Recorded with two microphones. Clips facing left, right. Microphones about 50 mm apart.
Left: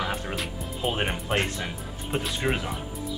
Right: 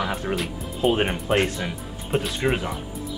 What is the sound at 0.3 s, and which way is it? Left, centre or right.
Speech, centre.